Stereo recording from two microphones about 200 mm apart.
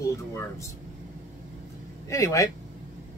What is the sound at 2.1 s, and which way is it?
Speech, 15° left (ahead or behind).